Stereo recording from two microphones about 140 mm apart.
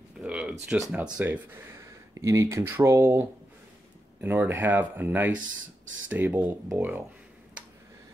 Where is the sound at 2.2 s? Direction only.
20° right (ahead or behind).